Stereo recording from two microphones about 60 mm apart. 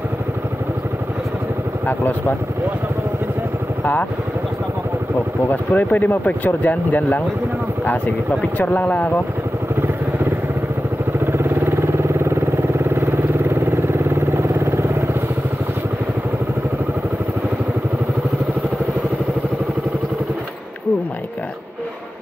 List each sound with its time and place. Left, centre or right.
1.9 s speech: left
5.5 s speech: left
8.5 s speech: left
11.3 s vehicle: right